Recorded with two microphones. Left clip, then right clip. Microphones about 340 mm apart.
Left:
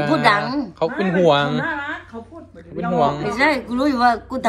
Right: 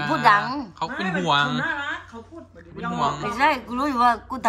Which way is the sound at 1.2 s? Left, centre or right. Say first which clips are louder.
Left 5 dB; centre.